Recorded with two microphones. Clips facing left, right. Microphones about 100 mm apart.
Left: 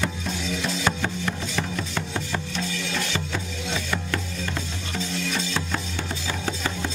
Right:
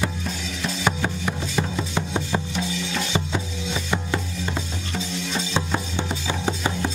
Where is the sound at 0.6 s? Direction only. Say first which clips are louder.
Right 3 dB; 10° right (ahead or behind).